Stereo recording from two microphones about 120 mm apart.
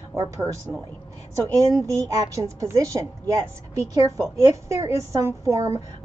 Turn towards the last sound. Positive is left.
turn(degrees=-25)  # may be behind; listen again after turning